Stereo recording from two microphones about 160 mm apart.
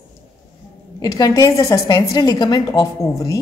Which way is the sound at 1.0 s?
25° left (ahead or behind).